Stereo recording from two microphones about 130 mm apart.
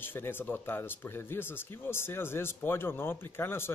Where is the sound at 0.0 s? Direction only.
15° left (ahead or behind).